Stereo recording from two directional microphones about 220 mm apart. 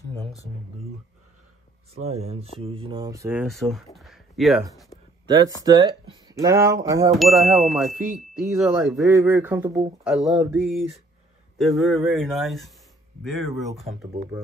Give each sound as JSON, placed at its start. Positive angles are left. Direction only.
{"t": 2.0, "sound": "speech", "side_deg": -30}
{"t": 3.4, "sound": "speech", "side_deg": 0}
{"t": 5.2, "sound": "speech", "side_deg": -20}
{"t": 7.2, "sound": "chime", "side_deg": 0}
{"t": 9.0, "sound": "speech", "side_deg": -10}
{"t": 10.0, "sound": "chime", "side_deg": -5}